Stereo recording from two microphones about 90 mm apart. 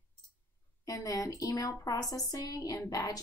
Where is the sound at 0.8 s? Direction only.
40° left (ahead or behind).